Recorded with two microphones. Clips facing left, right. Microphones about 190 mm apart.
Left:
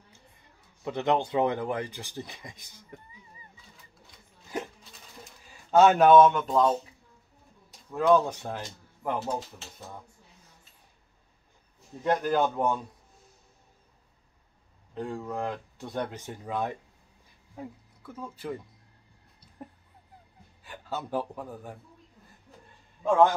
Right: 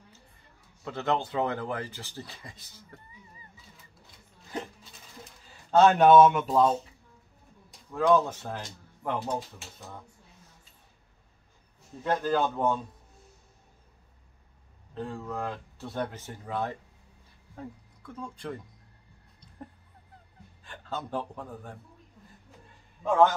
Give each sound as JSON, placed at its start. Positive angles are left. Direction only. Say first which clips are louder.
{"t": 0.8, "sound": "speech", "louder": "left 3 dB", "side_deg": 15}
{"t": 5.7, "sound": "speech", "louder": "even", "side_deg": 5}
{"t": 7.9, "sound": "speech", "louder": "left 1 dB", "side_deg": 10}
{"t": 9.0, "sound": "speech", "louder": "left 1 dB", "side_deg": 5}
{"t": 12.0, "sound": "speech", "louder": "left 2 dB", "side_deg": 15}
{"t": 15.0, "sound": "speech", "louder": "left 2 dB", "side_deg": 15}
{"t": 20.6, "sound": "speech", "louder": "left 1 dB", "side_deg": 10}